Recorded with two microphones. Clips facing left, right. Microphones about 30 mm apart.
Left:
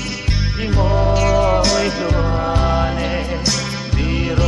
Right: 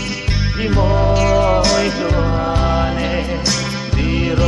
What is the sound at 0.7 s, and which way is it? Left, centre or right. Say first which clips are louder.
Music: right 2 dB; right.